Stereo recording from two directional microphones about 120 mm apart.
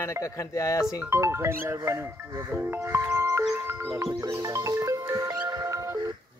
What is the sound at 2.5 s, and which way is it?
Speech, 15° right (ahead or behind).